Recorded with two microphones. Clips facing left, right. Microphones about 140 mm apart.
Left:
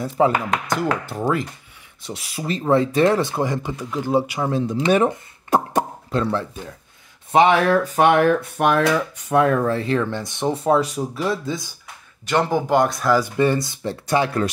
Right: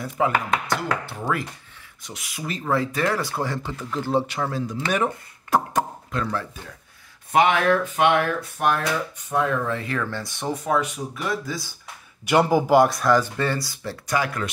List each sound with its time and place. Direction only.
0.0 s speech: 35° left (ahead or behind)
1.2 s speech: 25° left (ahead or behind); by 8.1 s 40° left (ahead or behind)
8.4 s speech: 70° left (ahead or behind)
9.7 s speech: 30° left (ahead or behind)
12.3 s speech: 10° right (ahead or behind)
13.2 s speech: 15° left (ahead or behind)